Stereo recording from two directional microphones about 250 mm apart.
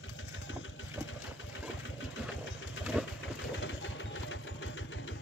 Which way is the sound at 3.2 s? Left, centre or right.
Left.